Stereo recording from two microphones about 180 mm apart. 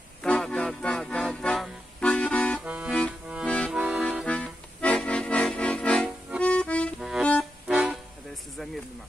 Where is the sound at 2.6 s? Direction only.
5° right (ahead or behind).